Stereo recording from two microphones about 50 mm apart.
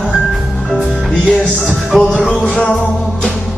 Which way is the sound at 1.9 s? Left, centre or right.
Centre.